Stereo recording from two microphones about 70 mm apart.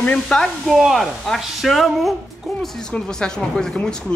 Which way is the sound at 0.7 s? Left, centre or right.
Centre.